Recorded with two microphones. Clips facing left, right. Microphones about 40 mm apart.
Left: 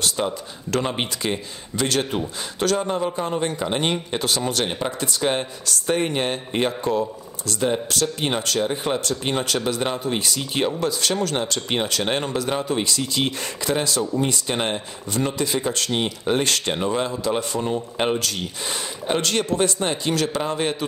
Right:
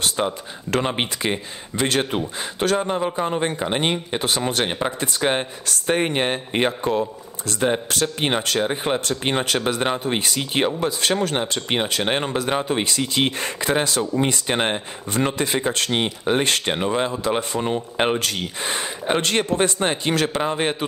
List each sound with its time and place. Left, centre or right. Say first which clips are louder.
0.2 s a man's voice: right 1 dB; centre; by 14.4 s right
14.5 s speech: right 2 dB; right